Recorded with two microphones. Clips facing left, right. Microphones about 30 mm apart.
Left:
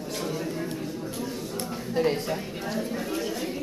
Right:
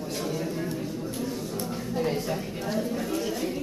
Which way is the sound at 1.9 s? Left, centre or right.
Left.